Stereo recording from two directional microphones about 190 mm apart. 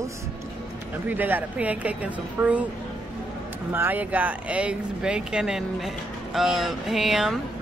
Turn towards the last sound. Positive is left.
turn(degrees=0)  # may be behind; listen again after turning